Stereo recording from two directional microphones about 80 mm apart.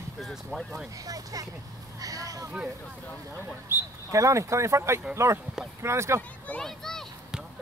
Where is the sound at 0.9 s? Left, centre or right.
Right.